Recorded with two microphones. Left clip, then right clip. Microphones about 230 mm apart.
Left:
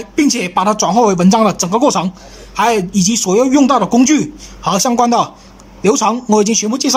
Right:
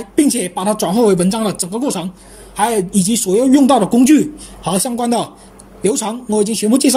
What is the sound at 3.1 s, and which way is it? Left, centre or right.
Speech, left.